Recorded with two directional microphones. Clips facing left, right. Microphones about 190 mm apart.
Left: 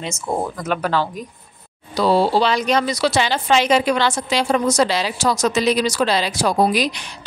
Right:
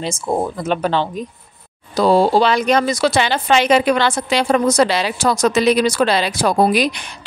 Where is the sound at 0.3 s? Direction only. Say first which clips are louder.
Right 3 dB; 25° right (ahead or behind).